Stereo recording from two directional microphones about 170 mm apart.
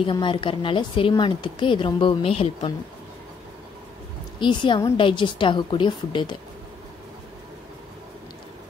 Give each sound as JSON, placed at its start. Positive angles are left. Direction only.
{"t": 0.0, "sound": "a woman's voice", "side_deg": 30}
{"t": 4.4, "sound": "a woman's voice", "side_deg": 30}